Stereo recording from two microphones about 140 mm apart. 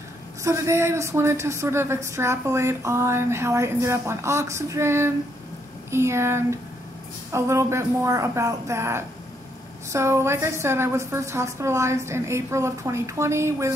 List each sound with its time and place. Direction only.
0.4 s a woman's voice: 20° right (ahead or behind)